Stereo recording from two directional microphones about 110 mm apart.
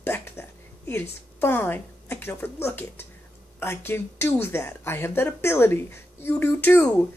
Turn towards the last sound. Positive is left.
turn(degrees=15)  # may be behind; listen again after turning